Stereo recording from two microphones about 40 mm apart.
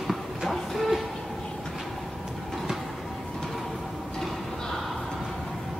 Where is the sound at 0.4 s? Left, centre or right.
Centre.